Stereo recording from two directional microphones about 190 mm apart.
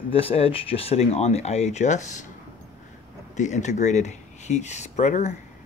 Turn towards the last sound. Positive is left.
turn(degrees=40)  # may be behind; listen again after turning